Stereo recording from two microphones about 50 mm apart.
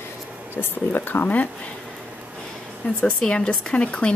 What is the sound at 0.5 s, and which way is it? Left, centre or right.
Speech, left.